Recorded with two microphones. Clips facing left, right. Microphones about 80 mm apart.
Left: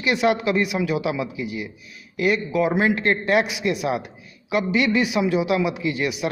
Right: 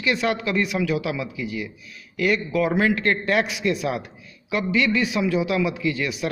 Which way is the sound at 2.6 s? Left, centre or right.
Centre.